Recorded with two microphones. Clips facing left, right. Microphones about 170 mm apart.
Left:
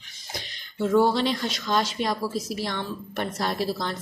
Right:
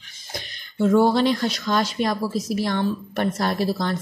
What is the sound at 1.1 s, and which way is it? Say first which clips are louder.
A woman's voice: right 5 dB; 50° right (ahead or behind).